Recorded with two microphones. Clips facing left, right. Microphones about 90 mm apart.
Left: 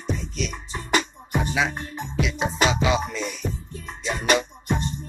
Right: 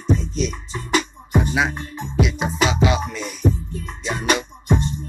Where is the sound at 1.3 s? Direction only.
10° right (ahead or behind).